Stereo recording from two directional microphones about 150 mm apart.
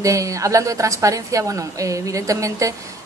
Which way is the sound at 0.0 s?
20° right (ahead or behind).